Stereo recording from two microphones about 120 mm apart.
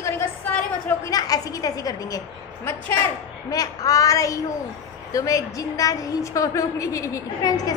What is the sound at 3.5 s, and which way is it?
A woman's voice, 30° left (ahead or behind).